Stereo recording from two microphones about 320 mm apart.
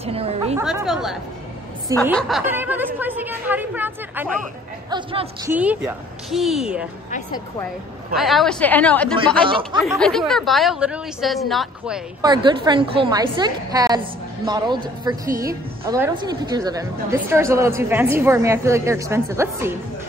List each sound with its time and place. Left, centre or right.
0.0 s a woman's voice: centre
0.6 s a woman's voice: centre
5.5 s speech: centre
7.1 s speech: left
8.2 s speech: centre
9.5 s a woman's voice: centre
9.8 s a woman's voice: centre